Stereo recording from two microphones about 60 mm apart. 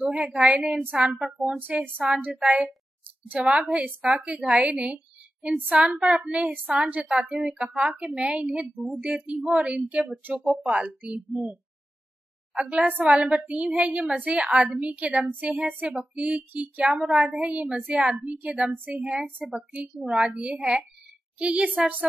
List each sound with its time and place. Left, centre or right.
0.1 s a woman's voice: centre
1.2 s a woman's voice: centre
1.6 s a woman's voice: right
9.0 s a woman's voice: centre
12.5 s a woman's voice: right